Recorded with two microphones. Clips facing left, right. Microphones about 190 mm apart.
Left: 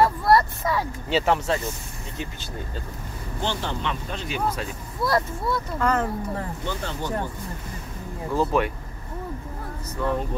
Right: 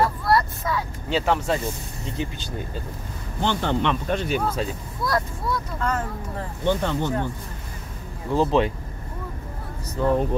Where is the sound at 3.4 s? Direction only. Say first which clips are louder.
Right 5 dB; 60° right (ahead or behind).